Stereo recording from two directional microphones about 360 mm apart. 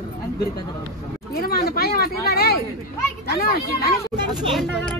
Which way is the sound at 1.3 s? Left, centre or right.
Left.